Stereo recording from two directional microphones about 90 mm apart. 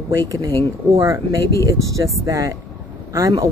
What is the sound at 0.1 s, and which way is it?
Speech, 40° right (ahead or behind).